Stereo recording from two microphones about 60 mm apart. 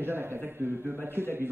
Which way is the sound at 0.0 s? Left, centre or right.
Right.